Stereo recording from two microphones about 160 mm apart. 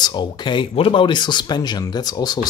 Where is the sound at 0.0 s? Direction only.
30° left (ahead or behind).